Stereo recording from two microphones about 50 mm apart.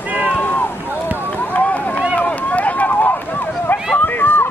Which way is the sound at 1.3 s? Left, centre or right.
Left.